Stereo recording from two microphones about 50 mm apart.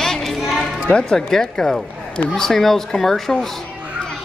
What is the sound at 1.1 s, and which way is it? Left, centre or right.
Speech, centre.